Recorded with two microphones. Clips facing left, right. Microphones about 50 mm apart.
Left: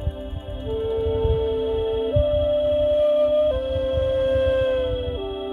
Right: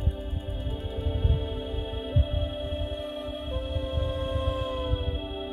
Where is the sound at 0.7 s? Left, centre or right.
Left.